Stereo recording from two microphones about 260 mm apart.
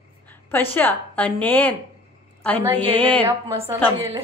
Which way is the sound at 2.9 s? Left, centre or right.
Centre.